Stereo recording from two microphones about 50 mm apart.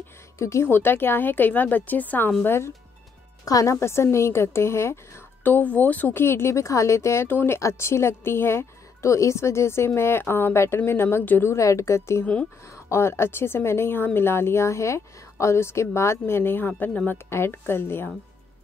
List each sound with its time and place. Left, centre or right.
0.4 s a woman's voice: left
0.7 s a woman's voice: left
2.4 s a woman's voice: left
3.8 s a woman's voice: left
5.4 s a woman's voice: left
6.1 s a woman's voice: left
7.2 s speech: left
7.5 s a woman's voice: left
11.4 s a woman's voice: left
12.7 s a woman's voice: left